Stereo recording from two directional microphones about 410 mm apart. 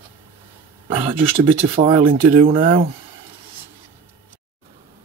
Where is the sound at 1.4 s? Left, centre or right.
Centre.